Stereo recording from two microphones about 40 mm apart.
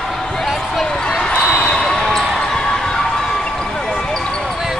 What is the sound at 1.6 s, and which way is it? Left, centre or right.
Basketball bounce, left.